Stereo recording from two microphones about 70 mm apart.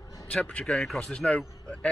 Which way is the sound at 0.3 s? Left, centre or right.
Centre.